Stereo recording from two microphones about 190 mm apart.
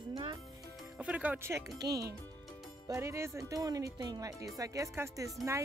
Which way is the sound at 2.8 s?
15° right (ahead or behind).